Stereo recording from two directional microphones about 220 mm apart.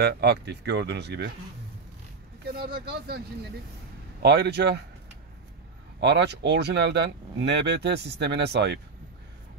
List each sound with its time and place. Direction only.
0.0 s speech: 50° right (ahead or behind)
2.5 s speech: 45° right (ahead or behind)
4.2 s speech: 50° right (ahead or behind)
5.9 s speech: 50° right (ahead or behind)